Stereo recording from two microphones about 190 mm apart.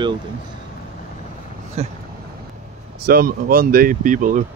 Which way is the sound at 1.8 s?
35° right (ahead or behind).